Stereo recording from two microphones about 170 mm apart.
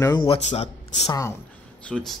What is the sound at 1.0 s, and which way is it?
Speech, 20° left (ahead or behind).